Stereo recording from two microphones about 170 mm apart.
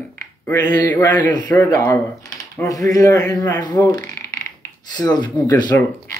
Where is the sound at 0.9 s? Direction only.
10° left (ahead or behind).